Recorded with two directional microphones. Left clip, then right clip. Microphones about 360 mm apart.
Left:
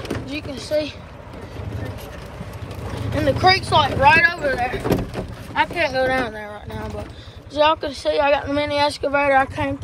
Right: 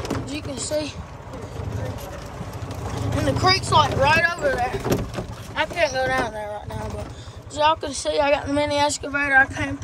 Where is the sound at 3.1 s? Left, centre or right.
Centre.